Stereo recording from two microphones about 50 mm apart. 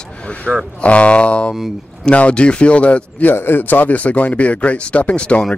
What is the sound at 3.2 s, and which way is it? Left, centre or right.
Speech, left.